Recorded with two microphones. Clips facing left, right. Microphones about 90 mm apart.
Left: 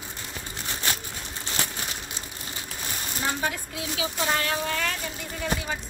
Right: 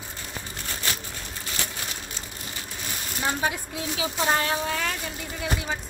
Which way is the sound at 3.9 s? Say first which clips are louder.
Right 2 dB; 25° right (ahead or behind).